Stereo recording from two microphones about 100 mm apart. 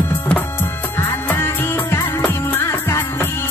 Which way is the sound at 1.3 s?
20° left (ahead or behind).